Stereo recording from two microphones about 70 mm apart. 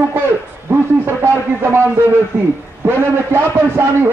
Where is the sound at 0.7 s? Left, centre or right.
Right.